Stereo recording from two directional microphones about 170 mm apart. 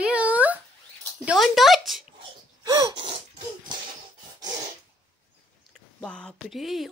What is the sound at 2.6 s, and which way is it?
Wheeze, 20° right (ahead or behind).